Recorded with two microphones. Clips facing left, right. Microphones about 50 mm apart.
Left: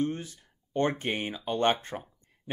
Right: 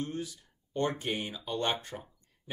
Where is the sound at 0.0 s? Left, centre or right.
Left.